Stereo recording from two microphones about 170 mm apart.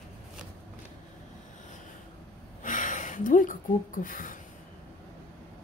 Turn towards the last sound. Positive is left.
turn(degrees=55)  # may be behind; listen again after turning